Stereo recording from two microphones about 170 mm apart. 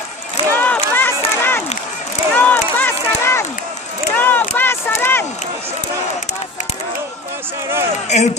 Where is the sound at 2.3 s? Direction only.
10° left (ahead or behind).